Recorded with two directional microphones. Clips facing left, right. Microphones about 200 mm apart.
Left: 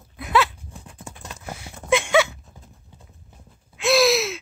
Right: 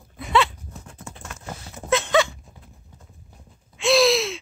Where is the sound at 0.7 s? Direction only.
15° left (ahead or behind).